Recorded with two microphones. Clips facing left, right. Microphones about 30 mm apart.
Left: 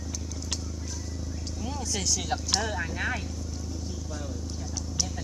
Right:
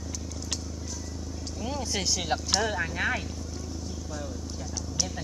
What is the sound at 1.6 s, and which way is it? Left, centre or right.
Speech, right.